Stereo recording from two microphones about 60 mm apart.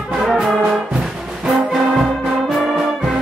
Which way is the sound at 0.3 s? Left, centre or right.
Centre.